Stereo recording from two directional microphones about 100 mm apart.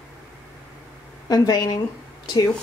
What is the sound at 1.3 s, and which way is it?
Speech, 40° left (ahead or behind).